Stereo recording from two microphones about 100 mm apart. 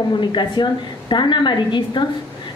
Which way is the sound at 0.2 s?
50° left (ahead or behind).